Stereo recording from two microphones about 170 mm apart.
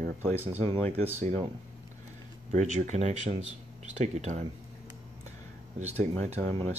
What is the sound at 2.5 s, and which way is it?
Speech, 45° right (ahead or behind).